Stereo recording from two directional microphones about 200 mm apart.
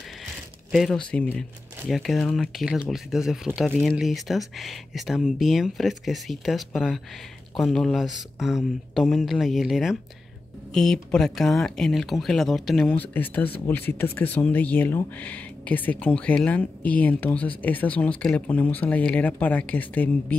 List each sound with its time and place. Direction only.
0.7 s speech: centre (ahead or behind)